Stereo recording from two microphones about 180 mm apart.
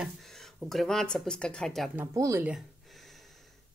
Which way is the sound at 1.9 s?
15° right (ahead or behind).